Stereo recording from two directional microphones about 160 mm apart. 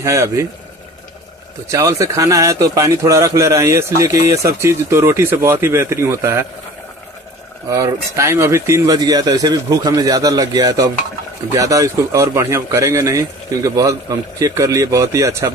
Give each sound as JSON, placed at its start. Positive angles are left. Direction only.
{"t": 0.0, "sound": "speech", "side_deg": -20}
{"t": 1.7, "sound": "speech", "side_deg": -20}
{"t": 7.7, "sound": "speech", "side_deg": -20}